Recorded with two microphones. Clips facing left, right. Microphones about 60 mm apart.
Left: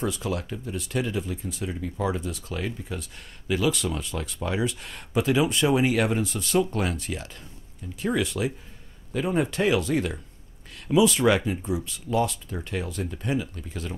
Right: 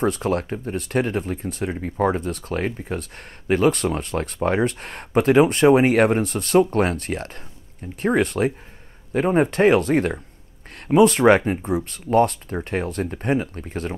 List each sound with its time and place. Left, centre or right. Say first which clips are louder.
0.0 s speech: right 7 dB; right